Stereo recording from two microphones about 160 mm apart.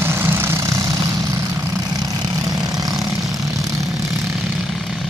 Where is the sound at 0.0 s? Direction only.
15° right (ahead or behind).